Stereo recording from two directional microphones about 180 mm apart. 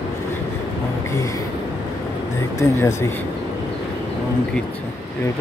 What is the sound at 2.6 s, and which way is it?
Speech, 15° left (ahead or behind).